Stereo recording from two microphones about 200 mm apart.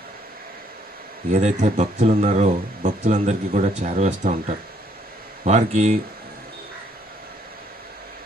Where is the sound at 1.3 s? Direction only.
35° right (ahead or behind).